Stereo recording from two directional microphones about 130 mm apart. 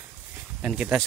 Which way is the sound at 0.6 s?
10° right (ahead or behind).